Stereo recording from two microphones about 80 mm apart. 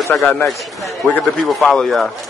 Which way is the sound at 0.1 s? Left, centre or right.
Centre.